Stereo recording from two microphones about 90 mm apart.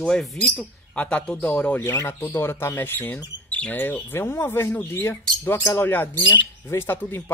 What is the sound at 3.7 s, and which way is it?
Speech, 25° left (ahead or behind).